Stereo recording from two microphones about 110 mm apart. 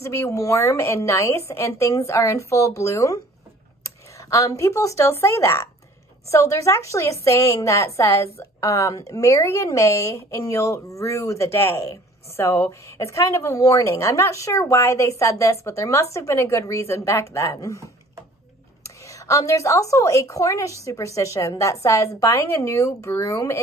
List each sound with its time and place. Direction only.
0.0 s a woman's voice: 25° left (ahead or behind)
19.0 s a woman's voice: 30° left (ahead or behind)